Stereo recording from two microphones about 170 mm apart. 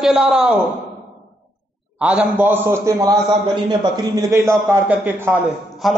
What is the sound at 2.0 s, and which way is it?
A man's voice, 10° right (ahead or behind).